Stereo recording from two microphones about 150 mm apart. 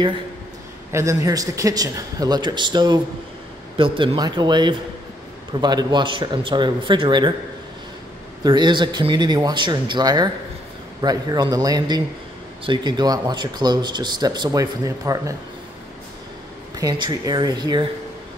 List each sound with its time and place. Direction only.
0.9 s speech: 20° right (ahead or behind)
8.5 s speech: 30° right (ahead or behind)
16.7 s speech: 25° right (ahead or behind)